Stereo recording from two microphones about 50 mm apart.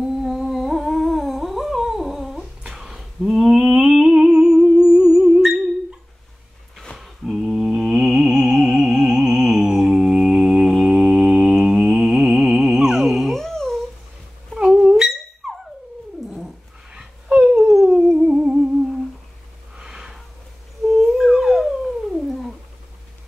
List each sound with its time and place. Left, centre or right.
0.3 s humming: centre
7.0 s a sound: centre
10.8 s mantra: centre
14.5 s dog: centre
17.3 s a sound: centre
17.6 s dog: centre
17.8 s humming: centre
19.8 s snort: centre
20.9 s dog: centre